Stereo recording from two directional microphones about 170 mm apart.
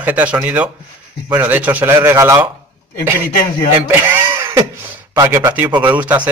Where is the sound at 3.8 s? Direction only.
15° right (ahead or behind).